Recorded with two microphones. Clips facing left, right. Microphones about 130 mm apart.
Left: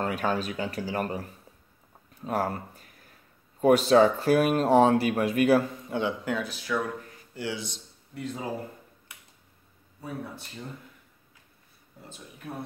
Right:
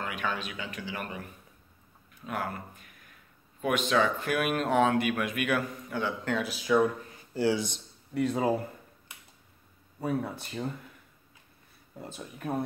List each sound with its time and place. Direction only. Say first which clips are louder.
0.0 s speech: left 6 dB; 40° left (ahead or behind); by 6.1 s 25° left (ahead or behind)
6.4 s speech: right 5 dB; 15° right (ahead or behind)
7.3 s speech: right 7 dB; 35° right (ahead or behind)
8.1 s speech: right 7 dB; 80° right
9.9 s speech: right 6 dB; 60° right (ahead or behind)